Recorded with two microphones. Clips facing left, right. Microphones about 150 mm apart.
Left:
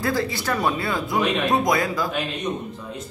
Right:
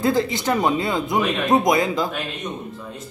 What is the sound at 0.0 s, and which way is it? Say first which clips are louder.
A man's voice: right 4 dB; 20° right (ahead or behind).